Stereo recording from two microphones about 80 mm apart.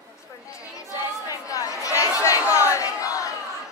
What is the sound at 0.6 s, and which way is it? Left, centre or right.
Chatter, left.